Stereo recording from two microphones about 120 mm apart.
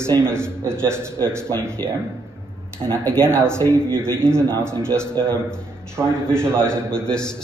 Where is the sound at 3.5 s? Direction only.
20° right (ahead or behind).